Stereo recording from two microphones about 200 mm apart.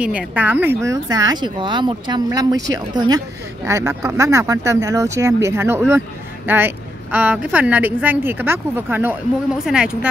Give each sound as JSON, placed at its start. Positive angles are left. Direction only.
{"t": 0.0, "sound": "speech", "side_deg": -5}